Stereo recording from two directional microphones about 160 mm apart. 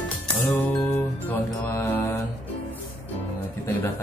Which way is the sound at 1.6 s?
10° left (ahead or behind).